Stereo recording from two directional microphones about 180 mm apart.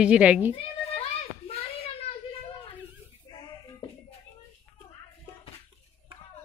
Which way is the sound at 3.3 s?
30° left (ahead or behind).